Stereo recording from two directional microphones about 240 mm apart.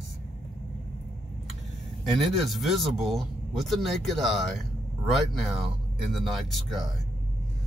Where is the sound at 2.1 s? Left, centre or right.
Centre.